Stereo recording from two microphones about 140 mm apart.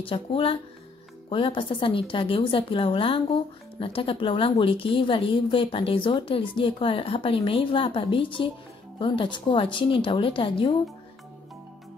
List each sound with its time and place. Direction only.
0.0 s a woman's voice: 40° left (ahead or behind)